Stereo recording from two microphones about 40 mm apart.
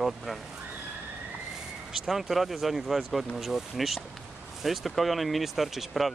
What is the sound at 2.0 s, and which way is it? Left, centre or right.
Speech, centre.